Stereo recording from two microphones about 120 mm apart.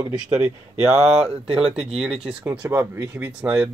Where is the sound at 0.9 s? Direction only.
65° right (ahead or behind).